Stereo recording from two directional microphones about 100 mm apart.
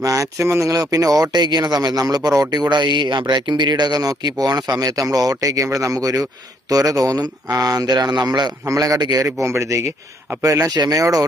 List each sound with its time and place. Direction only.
0.0 s speech: 35° right (ahead or behind)